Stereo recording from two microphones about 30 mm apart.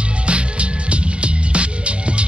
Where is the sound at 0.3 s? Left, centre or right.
Right.